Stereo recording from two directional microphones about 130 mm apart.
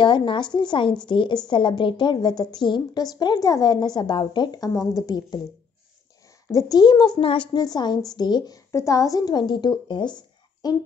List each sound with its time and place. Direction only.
0.0 s a woman's voice: 40° left (ahead or behind)
6.5 s a woman's voice: 35° left (ahead or behind)
7.5 s a woman's voice: 30° left (ahead or behind)